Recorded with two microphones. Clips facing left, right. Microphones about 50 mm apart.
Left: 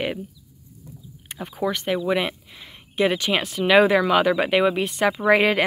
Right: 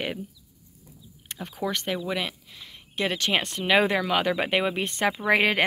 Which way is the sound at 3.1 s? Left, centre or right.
Centre.